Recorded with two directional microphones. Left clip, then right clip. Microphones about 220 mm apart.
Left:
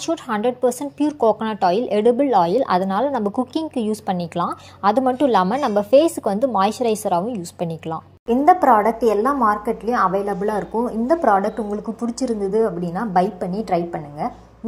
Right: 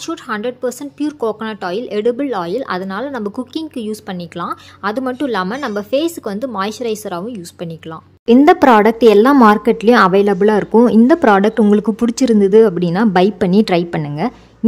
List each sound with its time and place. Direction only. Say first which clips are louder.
0.0 s a woman's voice: even; 5° left (ahead or behind)
8.5 s a woman's voice: right 2 dB; 45° right (ahead or behind)